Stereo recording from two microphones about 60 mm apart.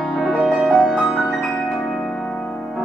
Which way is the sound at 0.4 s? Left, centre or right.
Centre.